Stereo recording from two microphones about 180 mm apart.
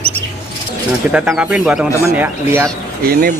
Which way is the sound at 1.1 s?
5° right (ahead or behind).